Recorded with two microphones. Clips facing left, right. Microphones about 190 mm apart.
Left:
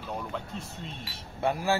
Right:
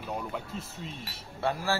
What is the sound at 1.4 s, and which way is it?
Speech, 15° left (ahead or behind).